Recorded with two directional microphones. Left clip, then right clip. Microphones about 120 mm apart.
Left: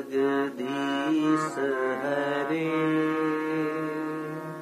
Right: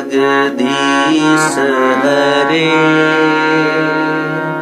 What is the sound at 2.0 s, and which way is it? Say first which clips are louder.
Speech: right 16 dB; 20° left (ahead or behind).